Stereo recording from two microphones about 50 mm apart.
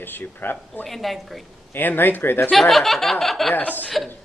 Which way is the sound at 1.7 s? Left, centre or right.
Left.